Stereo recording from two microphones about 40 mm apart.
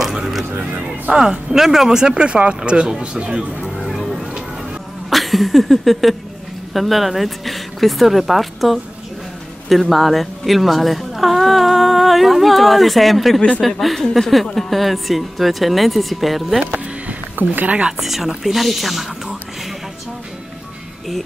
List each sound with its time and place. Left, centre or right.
0.0 s music: centre
1.1 s speech: centre
3.6 s a sound: centre
4.0 s a sound: centre
6.7 s a woman's voice: centre
17.4 s speech: right
17.9 s speech: centre